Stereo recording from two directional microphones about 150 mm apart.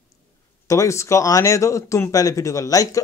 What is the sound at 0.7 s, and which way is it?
Speech, 20° left (ahead or behind).